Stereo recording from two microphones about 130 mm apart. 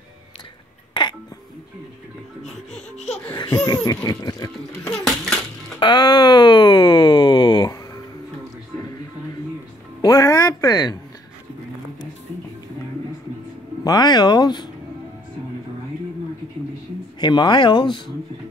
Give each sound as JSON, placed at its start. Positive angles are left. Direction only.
{"t": 1.0, "sound": "cough", "side_deg": 35}
{"t": 3.3, "sound": "laughter", "side_deg": 30}
{"t": 4.8, "sound": "babbling", "side_deg": 5}
{"t": 5.8, "sound": "a sound", "side_deg": 35}
{"t": 10.0, "sound": "music", "side_deg": 25}
{"t": 13.8, "sound": "speech", "side_deg": 30}
{"t": 17.2, "sound": "speech", "side_deg": 35}